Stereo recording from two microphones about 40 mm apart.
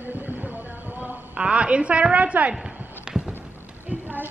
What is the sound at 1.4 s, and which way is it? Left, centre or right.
A woman's voice, right.